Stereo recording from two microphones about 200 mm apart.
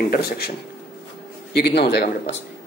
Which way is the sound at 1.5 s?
55° left (ahead or behind).